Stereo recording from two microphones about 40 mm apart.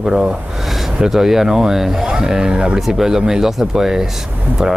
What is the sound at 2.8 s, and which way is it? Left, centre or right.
Speech, centre.